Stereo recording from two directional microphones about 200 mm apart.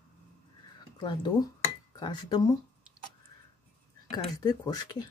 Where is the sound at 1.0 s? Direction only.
20° left (ahead or behind).